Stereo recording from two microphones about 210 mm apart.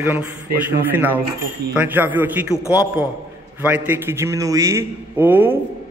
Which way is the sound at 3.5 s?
10° right (ahead or behind).